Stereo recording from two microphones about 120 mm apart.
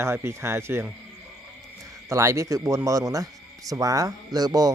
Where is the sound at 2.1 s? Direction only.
25° right (ahead or behind).